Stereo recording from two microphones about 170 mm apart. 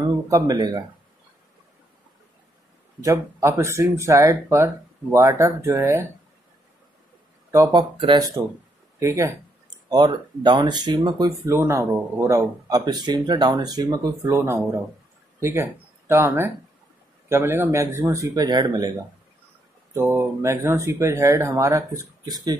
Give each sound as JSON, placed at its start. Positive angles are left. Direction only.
{"t": 0.3, "sound": "speech", "side_deg": -20}
{"t": 3.0, "sound": "speech", "side_deg": -20}
{"t": 7.5, "sound": "speech", "side_deg": -20}
{"t": 19.9, "sound": "speech", "side_deg": -10}